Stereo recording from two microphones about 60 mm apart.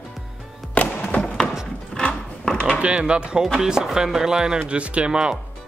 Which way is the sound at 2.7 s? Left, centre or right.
Centre.